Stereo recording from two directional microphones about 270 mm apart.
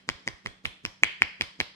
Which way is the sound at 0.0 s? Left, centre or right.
Centre.